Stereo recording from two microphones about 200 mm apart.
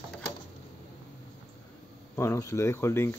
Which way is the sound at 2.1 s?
15° left (ahead or behind).